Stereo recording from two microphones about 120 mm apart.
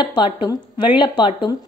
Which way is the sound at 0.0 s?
40° left (ahead or behind).